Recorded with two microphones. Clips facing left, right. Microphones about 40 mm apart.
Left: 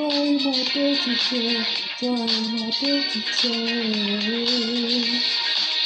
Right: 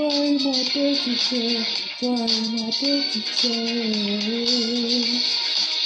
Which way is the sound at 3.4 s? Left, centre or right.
Left.